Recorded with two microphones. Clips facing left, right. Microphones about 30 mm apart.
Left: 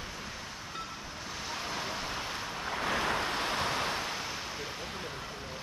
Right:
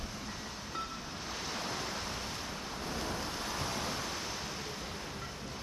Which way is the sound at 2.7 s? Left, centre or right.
Left.